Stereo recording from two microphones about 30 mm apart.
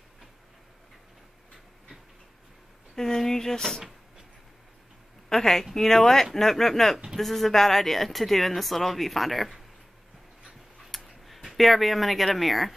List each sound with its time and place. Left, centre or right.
3.0 s speech: centre
5.3 s speech: centre
10.9 s a sound: centre
11.2 s speech: centre